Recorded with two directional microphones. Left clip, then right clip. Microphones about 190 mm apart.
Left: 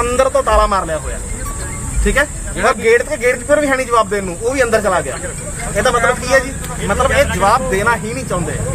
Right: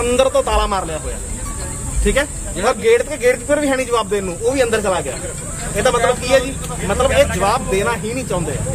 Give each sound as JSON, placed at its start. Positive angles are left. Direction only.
{"t": 0.0, "sound": "speech", "side_deg": -15}
{"t": 2.6, "sound": "speech", "side_deg": -20}